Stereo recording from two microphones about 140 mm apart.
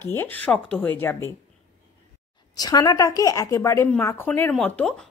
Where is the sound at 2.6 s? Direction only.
30° left (ahead or behind).